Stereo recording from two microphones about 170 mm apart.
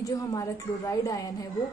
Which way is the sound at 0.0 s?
20° left (ahead or behind).